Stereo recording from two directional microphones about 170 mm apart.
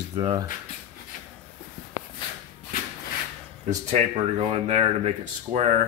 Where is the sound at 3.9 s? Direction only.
40° right (ahead or behind).